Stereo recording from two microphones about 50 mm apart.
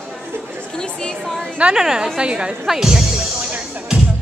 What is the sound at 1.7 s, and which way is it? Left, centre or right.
Speech, centre.